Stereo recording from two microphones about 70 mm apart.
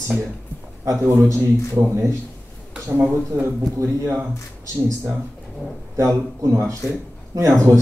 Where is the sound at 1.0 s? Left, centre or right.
Right.